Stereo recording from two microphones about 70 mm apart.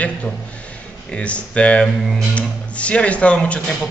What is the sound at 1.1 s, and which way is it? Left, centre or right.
Speech, centre.